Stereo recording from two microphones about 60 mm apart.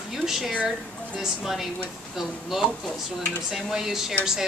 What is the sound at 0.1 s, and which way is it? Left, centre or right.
A woman's voice, centre.